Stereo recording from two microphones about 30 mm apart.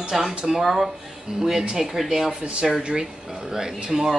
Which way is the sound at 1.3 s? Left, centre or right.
Right.